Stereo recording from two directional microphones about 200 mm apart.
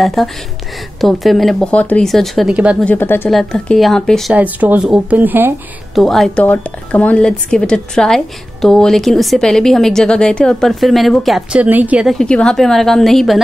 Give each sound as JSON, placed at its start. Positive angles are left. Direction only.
{"t": 0.0, "sound": "speech", "side_deg": 0}
{"t": 2.8, "sound": "speech", "side_deg": 10}
{"t": 5.9, "sound": "speech", "side_deg": 0}